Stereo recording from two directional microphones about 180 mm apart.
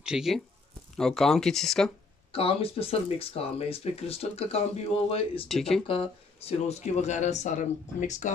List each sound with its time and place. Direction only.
0.0 s speech: 5° right (ahead or behind)
2.3 s speech: 30° left (ahead or behind)
5.5 s speech: centre (ahead or behind)
5.9 s speech: 30° left (ahead or behind)